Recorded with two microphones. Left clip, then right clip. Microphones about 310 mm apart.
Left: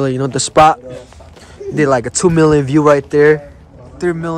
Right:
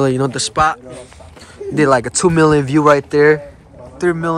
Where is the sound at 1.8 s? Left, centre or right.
Centre.